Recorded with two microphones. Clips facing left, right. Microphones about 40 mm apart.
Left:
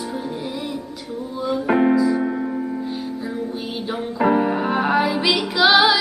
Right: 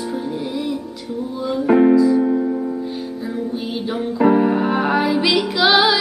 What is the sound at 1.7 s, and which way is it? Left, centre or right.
Piano, centre.